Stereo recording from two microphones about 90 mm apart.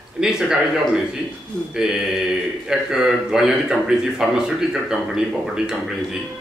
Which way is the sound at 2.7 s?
5° right (ahead or behind).